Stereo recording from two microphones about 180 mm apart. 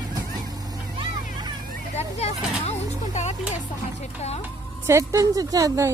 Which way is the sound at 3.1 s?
40° left (ahead or behind).